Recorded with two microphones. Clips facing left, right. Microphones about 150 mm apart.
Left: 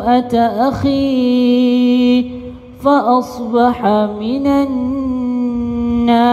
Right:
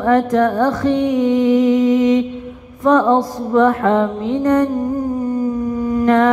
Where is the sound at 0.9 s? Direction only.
75° left (ahead or behind).